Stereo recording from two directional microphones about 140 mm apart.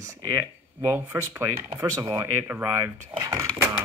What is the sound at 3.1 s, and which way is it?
Speech, 25° right (ahead or behind).